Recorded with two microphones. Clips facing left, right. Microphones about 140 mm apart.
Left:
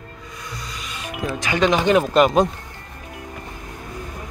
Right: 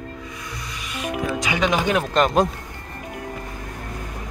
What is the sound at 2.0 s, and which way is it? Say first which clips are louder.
Speech: left 3 dB; 5° left (ahead or behind).